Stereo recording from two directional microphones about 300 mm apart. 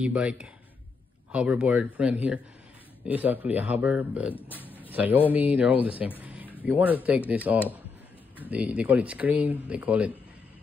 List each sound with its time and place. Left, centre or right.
0.0 s speech: centre
4.4 s a sound: centre
4.9 s speech: centre
6.2 s a sound: centre
6.6 s speech: centre
8.4 s speech: centre